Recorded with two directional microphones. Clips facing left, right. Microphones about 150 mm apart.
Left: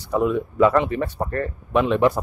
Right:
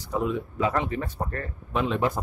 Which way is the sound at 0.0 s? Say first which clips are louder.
Left 6 dB; 65° left (ahead or behind).